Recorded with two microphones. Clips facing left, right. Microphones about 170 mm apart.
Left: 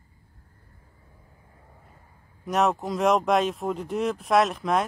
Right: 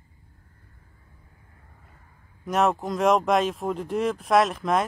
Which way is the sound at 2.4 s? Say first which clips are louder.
Right 1 dB; centre (ahead or behind).